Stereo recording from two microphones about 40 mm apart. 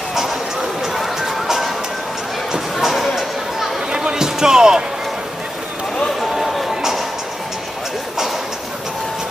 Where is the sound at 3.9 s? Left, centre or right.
Centre.